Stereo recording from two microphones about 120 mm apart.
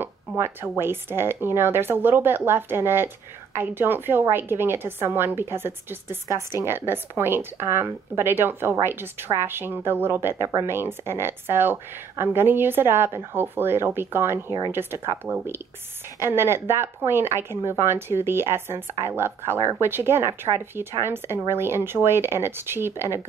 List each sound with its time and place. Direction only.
0.0 s speech: 15° right (ahead or behind)
16.2 s speech: 20° right (ahead or behind)